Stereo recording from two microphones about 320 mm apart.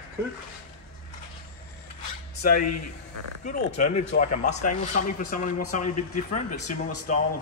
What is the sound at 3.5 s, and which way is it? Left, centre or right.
Speech, left.